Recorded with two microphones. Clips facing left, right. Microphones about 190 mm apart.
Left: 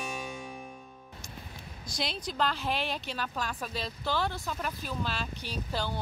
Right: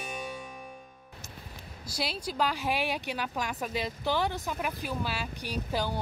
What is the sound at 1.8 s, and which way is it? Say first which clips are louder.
Speech: right 1 dB; 5° right (ahead or behind).